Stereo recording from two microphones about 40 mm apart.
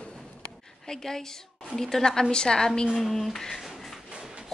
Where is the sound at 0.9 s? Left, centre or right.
Centre.